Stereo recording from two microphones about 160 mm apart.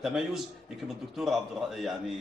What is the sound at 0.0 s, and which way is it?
A man's voice, centre (ahead or behind).